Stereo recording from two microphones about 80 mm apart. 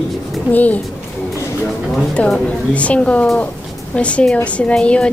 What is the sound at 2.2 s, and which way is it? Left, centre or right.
A woman's voice, centre.